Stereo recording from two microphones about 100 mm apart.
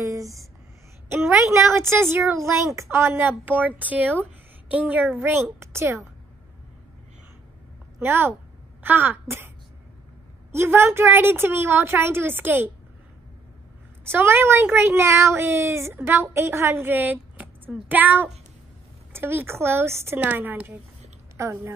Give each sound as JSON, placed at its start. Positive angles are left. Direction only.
{"t": 0.0, "sound": "a woman's voice", "side_deg": -35}
{"t": 8.0, "sound": "a woman's voice", "side_deg": -25}
{"t": 10.5, "sound": "a woman's voice", "side_deg": -25}
{"t": 14.0, "sound": "a woman's voice", "side_deg": -25}